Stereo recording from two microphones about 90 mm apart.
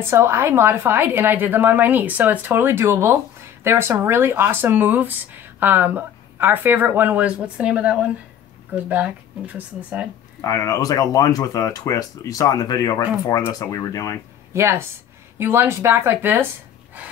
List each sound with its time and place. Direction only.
0.0 s a woman's voice: 30° right (ahead or behind)
10.4 s speech: 40° left (ahead or behind)
14.5 s a woman's voice: 30° right (ahead or behind)